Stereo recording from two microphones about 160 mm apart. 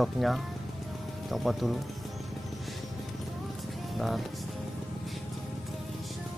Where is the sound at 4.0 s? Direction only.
Centre (ahead or behind).